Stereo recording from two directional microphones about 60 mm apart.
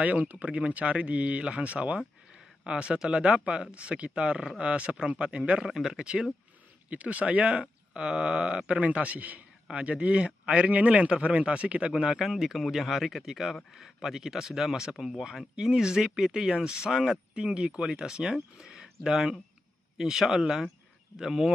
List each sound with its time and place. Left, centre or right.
0.0 s a man's voice: right
11.9 s speech: centre
15.5 s speech: centre